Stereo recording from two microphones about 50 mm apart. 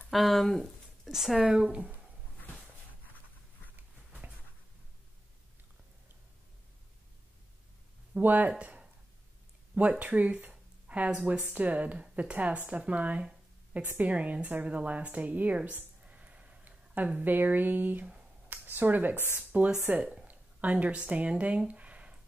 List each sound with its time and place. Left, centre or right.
0.1 s speech: centre
1.4 s speech: centre
1.7 s speech: right
8.2 s speech: right
8.5 s a woman's voice: right
16.1 s a sound: right
18.5 s speech: right
19.9 s a woman's voice: right
21.6 s a sound: right